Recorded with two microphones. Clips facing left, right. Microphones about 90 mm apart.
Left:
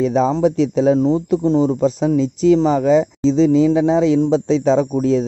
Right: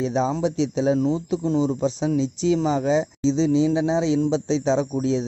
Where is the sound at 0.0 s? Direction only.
50° left (ahead or behind).